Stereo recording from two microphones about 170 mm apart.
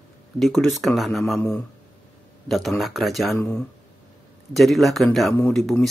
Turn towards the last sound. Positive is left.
turn(degrees=5)  # may be behind; listen again after turning